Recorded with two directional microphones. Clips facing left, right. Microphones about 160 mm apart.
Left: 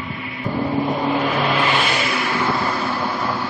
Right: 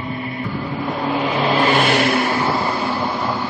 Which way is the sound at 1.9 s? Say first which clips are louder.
Right 5 dB; 55° right (ahead or behind).